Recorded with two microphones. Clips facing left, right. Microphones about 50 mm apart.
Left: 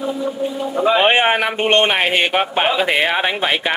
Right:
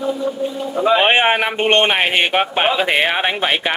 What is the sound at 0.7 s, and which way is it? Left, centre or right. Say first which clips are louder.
Speech: right 1 dB; centre.